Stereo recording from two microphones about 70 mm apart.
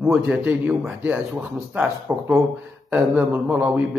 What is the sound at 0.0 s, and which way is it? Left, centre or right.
Speech, centre.